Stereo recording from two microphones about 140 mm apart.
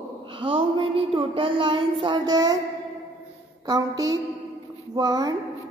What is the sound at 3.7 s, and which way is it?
A woman's voice, 25° right (ahead or behind).